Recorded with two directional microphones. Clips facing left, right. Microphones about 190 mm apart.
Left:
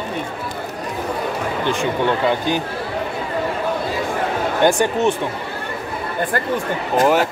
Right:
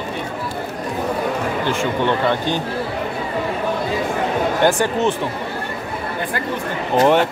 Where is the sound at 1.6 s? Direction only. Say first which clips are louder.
Left 2 dB; 15° left (ahead or behind).